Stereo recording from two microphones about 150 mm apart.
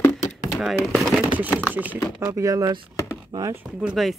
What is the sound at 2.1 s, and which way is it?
Speech, 20° right (ahead or behind).